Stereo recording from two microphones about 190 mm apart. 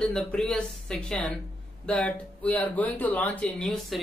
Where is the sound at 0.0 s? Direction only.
5° left (ahead or behind).